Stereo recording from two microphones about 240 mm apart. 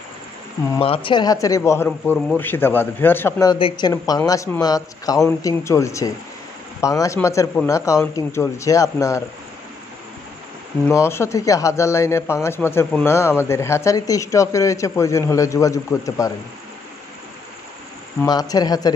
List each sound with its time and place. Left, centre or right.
0.7 s a man's voice: left
10.9 s a man's voice: centre
18.2 s a man's voice: centre